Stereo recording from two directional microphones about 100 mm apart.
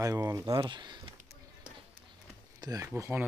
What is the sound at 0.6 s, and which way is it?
Speech, 45° right (ahead or behind).